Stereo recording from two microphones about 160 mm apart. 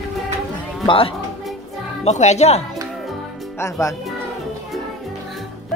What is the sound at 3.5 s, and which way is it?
Speech, 20° left (ahead or behind).